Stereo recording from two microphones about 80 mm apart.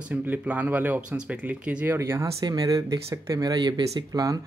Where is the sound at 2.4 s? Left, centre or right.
Right.